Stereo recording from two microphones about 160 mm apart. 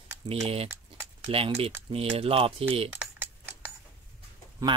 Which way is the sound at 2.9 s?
10° right (ahead or behind).